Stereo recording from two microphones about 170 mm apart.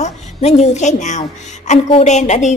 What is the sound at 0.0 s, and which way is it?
A woman's voice, 40° left (ahead or behind).